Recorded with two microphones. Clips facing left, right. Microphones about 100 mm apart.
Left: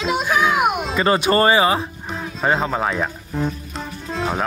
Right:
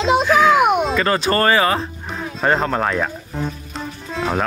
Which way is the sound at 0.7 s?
5° left (ahead or behind).